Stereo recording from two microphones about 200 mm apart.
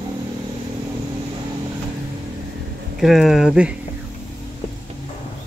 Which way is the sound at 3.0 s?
Centre (ahead or behind).